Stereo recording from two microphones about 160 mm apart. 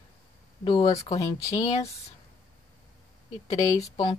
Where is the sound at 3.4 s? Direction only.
20° left (ahead or behind).